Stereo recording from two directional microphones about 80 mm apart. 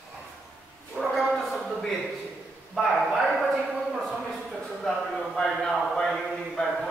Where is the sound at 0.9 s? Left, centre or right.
Centre.